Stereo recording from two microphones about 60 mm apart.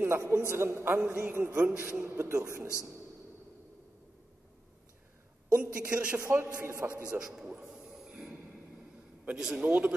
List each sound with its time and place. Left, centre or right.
0.0 s a man's voice: right
1.7 s a woman's voice: right
2.0 s a man's voice: right
5.6 s a woman's voice: right
6.1 s a man's voice: right
7.2 s a man's voice: centre
9.3 s a man's voice: centre